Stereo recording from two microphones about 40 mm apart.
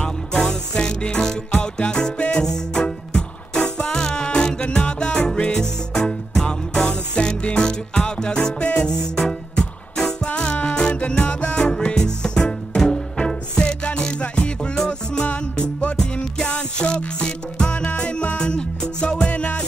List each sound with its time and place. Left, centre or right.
0.0 s music: left
2.1 s music: left
2.4 s music: centre
4.6 s music: left
8.5 s music: left
9.2 s music: centre
10.2 s music: left
14.2 s music: left
16.4 s music: left
19.2 s music: left